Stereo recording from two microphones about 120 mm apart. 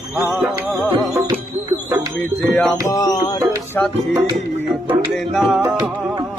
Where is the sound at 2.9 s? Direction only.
30° left (ahead or behind).